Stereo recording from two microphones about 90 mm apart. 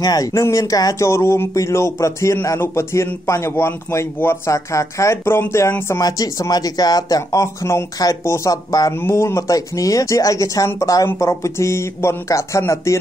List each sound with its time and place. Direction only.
0.0 s speech: 45° left (ahead or behind)
0.3 s speech: 35° left (ahead or behind)
6.0 s speech: 40° left (ahead or behind)